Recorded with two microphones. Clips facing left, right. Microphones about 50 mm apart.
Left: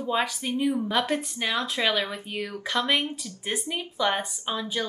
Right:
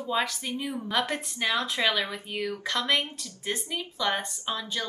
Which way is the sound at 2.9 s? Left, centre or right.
Left.